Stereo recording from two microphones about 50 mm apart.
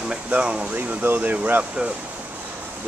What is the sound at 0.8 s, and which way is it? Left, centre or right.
Speech, right.